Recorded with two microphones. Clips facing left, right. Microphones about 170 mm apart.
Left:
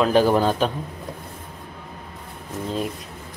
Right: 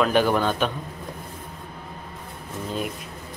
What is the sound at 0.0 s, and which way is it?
Speech, 35° left (ahead or behind).